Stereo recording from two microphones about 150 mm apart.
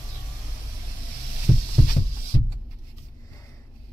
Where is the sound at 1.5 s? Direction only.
50° right (ahead or behind).